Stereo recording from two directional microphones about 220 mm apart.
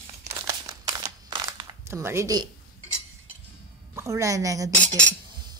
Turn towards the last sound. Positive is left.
turn(degrees=-15)  # may be behind; listen again after turning